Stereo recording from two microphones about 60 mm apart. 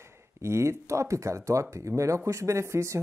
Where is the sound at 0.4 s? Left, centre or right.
Right.